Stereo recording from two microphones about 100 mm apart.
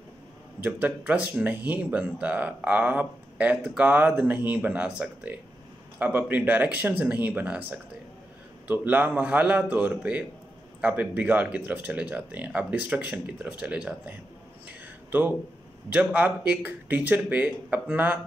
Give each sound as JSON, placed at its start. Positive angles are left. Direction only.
{"t": 0.7, "sound": "speech", "side_deg": -15}